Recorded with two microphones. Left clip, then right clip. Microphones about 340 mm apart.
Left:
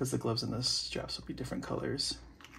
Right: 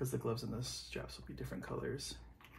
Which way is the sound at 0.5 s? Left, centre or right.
Left.